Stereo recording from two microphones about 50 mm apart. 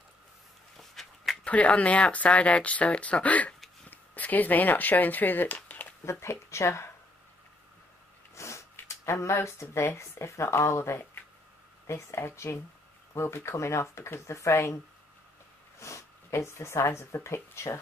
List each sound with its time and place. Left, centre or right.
0.7 s a sound: centre
1.4 s speech: left
6.0 s speech: left
8.4 s a sound: left
8.7 s speech: left
15.8 s speech: left